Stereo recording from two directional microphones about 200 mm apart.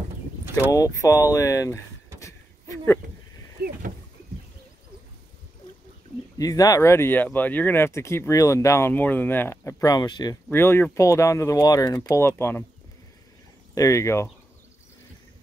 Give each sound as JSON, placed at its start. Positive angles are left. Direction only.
{"t": 0.6, "sound": "speech", "side_deg": 15}
{"t": 3.6, "sound": "speech", "side_deg": -50}
{"t": 6.3, "sound": "speech", "side_deg": 15}
{"t": 13.7, "sound": "speech", "side_deg": 15}